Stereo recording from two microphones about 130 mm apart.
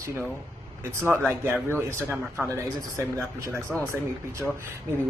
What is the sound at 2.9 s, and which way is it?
Speech, 20° right (ahead or behind).